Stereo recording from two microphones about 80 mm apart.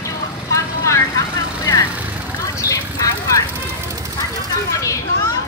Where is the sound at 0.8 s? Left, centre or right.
Left.